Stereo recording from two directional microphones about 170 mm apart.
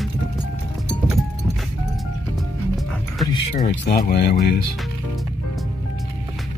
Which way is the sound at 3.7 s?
80° left.